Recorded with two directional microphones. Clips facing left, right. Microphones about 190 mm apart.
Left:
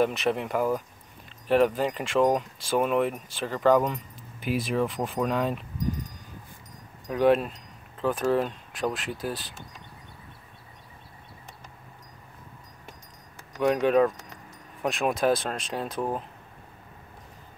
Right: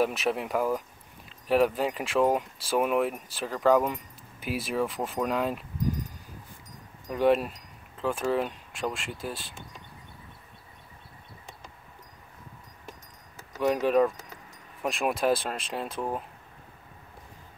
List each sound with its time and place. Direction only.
0.0 s speech: 5° right (ahead or behind)
7.1 s speech: centre (ahead or behind)
13.6 s speech: 5° right (ahead or behind)